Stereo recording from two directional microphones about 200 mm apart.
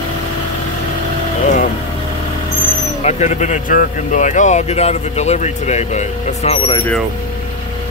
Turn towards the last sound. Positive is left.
turn(degrees=30)  # may be behind; listen again after turning